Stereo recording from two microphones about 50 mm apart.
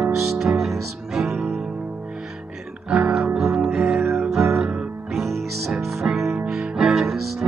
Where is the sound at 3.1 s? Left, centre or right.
Centre.